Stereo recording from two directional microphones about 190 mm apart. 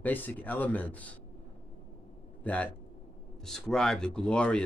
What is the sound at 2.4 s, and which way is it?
A man's voice, 5° left (ahead or behind).